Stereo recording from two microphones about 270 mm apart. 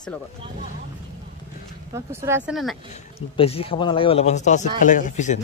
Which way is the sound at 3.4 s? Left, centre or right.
Left.